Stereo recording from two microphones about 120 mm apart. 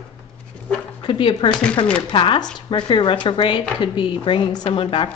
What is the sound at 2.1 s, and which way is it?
Speech, 45° left (ahead or behind).